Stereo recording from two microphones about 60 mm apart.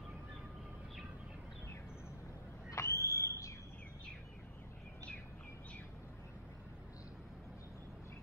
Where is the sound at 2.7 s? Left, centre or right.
Left.